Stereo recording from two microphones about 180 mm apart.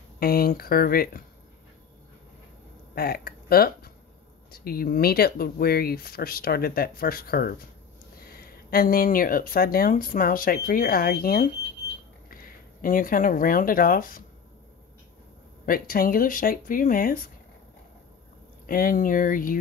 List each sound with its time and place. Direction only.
0.2 s speech: 55° left (ahead or behind)
2.9 s speech: 55° left (ahead or behind)
15.6 s speech: 55° left (ahead or behind)
18.7 s speech: 50° left (ahead or behind)